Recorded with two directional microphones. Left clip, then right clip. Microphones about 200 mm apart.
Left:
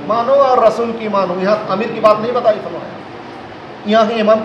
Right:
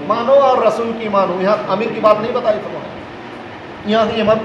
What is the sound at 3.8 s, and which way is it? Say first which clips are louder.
Speech: left 2 dB; 15° left (ahead or behind).